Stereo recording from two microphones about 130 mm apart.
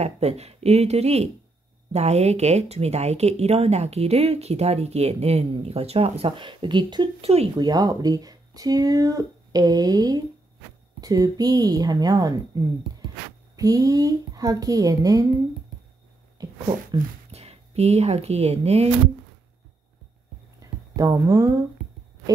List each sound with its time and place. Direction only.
0.0 s speech: 55° right (ahead or behind); by 15.2 s 30° right (ahead or behind)
16.3 s a sound: 35° right (ahead or behind)
17.3 s speech: 55° right (ahead or behind)
20.9 s speech: 25° right (ahead or behind)